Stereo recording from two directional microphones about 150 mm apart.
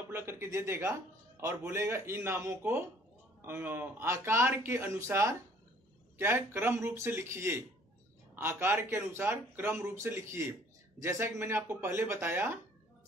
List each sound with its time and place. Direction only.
0.1 s a man's voice: 15° right (ahead or behind)